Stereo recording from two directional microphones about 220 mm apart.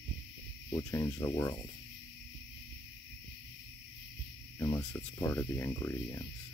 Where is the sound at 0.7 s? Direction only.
15° left (ahead or behind).